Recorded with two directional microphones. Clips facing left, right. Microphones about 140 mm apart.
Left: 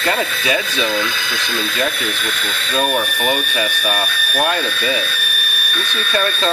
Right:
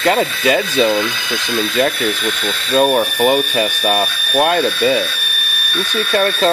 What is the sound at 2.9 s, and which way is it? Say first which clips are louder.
Speech: right 6 dB; 30° right (ahead or behind).